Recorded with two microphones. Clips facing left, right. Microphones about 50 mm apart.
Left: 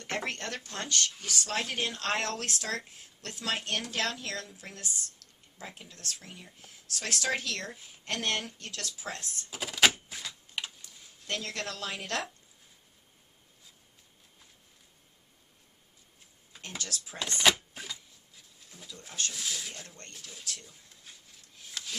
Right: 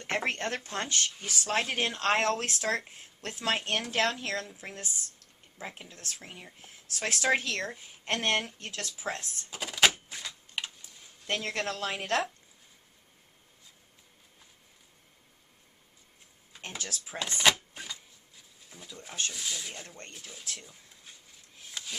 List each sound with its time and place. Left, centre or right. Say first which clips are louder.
0.0 s speech: right 4 dB; right
9.5 s typewriter: even; centre
11.2 s speech: right 4 dB; right
16.6 s speech: even; right
17.2 s a sound: even; centre
19.3 s speech: even; centre
20.6 s a sound: right 1 dB; centre